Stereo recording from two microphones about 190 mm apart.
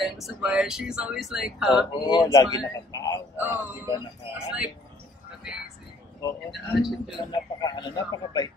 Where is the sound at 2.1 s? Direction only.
20° left (ahead or behind).